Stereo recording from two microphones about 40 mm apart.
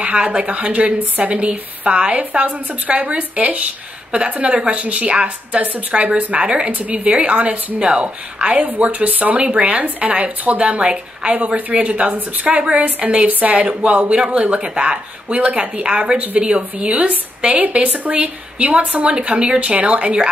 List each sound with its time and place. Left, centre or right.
0.0 s speech: right
7.1 s speech: right
7.8 s speech: right
10.6 s speech: right
19.2 s speech: right